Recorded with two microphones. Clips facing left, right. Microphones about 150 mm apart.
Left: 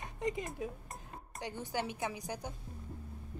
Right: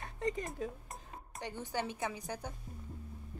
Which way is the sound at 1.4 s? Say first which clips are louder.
Even; 10° left (ahead or behind).